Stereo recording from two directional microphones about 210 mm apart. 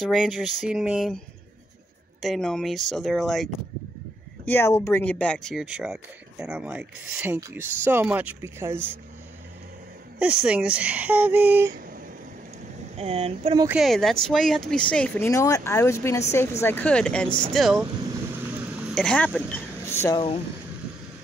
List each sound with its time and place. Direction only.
0.0 s speech: centre (ahead or behind)
2.2 s speech: centre (ahead or behind)
4.5 s speech: 10° left (ahead or behind); by 8.7 s 10° right (ahead or behind)
10.1 s speech: 5° right (ahead or behind)
12.9 s speech: 30° right (ahead or behind)
13.7 s speech: centre (ahead or behind)
18.9 s speech: 5° left (ahead or behind)